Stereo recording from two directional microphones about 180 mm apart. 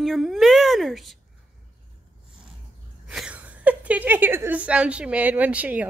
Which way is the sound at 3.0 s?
5° right (ahead or behind).